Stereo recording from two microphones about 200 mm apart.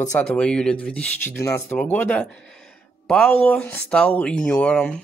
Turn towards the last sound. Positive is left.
turn(degrees=5)  # may be behind; listen again after turning